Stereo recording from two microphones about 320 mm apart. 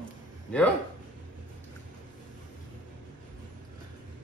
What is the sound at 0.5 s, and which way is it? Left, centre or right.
Speech, centre.